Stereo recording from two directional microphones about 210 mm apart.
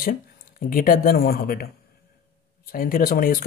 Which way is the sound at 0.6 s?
40° left (ahead or behind).